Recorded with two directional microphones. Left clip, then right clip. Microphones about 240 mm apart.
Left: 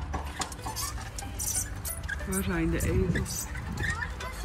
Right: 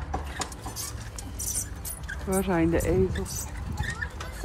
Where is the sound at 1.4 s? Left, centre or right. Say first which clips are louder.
Even; centre.